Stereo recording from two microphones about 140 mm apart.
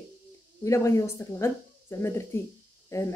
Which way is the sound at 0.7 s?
20° left (ahead or behind).